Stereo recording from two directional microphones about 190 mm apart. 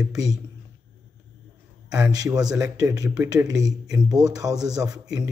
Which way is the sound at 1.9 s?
20° right (ahead or behind).